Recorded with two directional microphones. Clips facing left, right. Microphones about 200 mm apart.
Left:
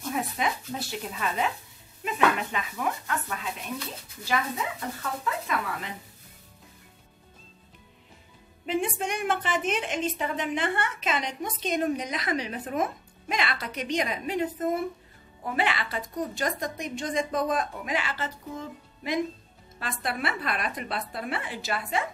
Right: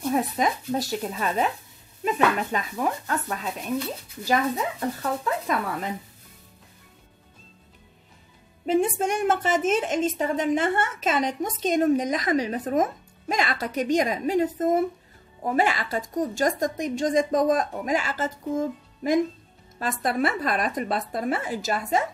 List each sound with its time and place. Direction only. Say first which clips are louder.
0.1 s a woman's voice: right 4 dB; 40° right (ahead or behind)
8.6 s a woman's voice: right 6 dB; 45° right (ahead or behind)